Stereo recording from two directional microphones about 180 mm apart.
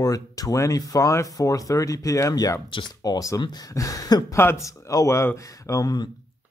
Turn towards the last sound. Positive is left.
turn(degrees=20)  # may be behind; listen again after turning